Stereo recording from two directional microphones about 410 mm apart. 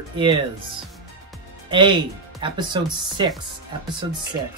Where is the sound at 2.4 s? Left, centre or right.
Centre.